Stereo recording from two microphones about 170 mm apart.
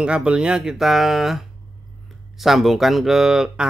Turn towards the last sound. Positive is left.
turn(degrees=-5)  # may be behind; listen again after turning